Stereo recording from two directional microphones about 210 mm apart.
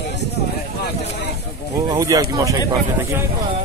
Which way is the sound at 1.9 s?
15° right (ahead or behind).